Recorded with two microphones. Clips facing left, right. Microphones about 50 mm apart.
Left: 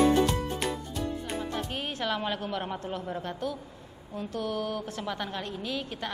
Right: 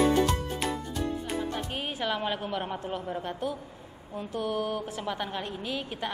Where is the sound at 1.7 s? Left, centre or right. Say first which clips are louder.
Even; centre.